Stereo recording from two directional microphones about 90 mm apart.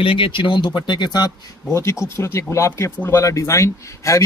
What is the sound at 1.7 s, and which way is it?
Speech, 30° left (ahead or behind).